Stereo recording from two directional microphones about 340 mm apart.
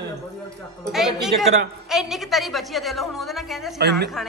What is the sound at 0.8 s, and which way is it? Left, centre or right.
A woman's voice, centre.